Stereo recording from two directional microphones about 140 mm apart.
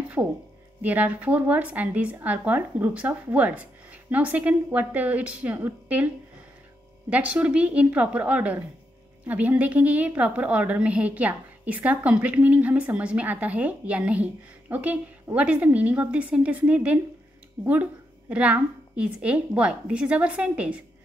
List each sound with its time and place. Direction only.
0.2 s a woman's voice: 15° right (ahead or behind)
7.1 s a woman's voice: 10° right (ahead or behind)
17.6 s speech: 20° right (ahead or behind)
18.3 s a woman's voice: 10° right (ahead or behind)